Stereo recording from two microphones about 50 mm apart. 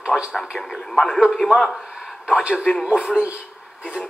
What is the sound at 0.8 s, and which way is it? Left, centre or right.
Speech, centre.